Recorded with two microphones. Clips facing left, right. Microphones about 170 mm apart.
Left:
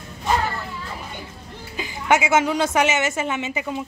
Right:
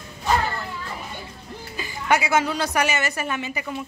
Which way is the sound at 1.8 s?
20° left (ahead or behind).